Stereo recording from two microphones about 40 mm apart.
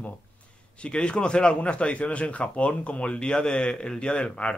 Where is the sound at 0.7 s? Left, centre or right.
Left.